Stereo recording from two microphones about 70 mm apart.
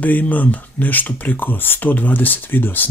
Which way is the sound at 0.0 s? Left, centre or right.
Left.